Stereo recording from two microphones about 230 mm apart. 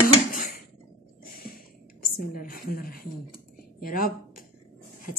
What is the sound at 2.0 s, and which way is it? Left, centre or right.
A woman's voice, left.